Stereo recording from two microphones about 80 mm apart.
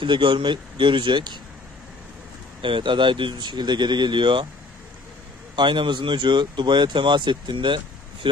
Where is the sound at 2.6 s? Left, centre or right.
Right.